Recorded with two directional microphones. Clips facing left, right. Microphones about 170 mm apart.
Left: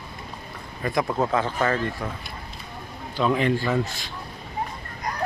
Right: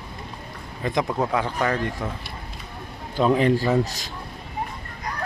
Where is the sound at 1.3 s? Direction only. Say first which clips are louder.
Even; 15° right (ahead or behind).